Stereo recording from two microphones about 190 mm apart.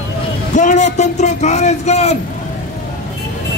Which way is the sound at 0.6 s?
40° left (ahead or behind).